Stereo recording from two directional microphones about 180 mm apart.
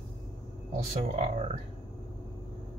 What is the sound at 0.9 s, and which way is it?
Speech, 40° right (ahead or behind).